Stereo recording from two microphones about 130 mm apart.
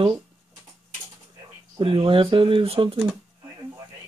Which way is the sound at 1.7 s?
45° right (ahead or behind).